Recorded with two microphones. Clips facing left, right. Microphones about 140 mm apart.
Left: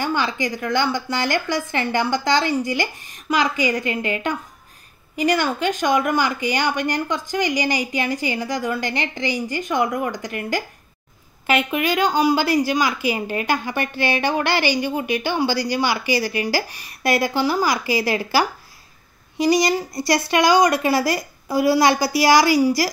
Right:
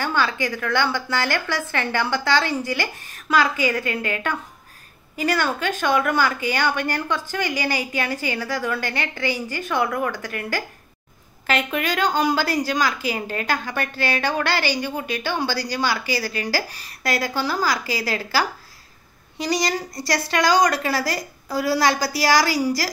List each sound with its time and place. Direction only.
0.0 s a woman's voice: 15° left (ahead or behind)
5.2 s a woman's voice: 15° left (ahead or behind)